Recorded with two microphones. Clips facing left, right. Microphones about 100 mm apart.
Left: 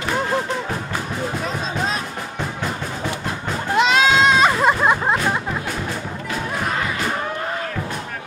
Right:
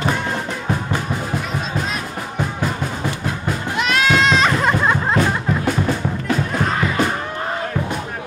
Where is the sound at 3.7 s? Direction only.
25° left (ahead or behind).